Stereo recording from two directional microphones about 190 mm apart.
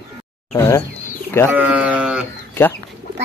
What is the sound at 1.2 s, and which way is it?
Bird, 10° left (ahead or behind).